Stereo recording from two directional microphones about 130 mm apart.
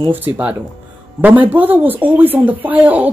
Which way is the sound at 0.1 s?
15° right (ahead or behind).